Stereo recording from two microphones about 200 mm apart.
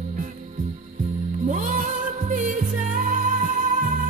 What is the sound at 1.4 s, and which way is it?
Music, 40° right (ahead or behind).